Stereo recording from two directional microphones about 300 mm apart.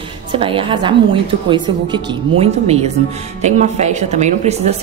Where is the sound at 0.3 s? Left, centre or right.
Centre.